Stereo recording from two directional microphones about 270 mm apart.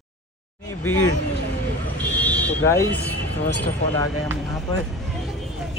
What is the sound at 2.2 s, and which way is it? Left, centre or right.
Vehicle, centre.